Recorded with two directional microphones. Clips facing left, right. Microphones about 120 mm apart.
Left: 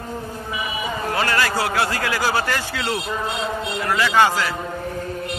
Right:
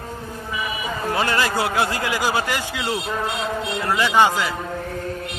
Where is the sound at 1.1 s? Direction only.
20° right (ahead or behind).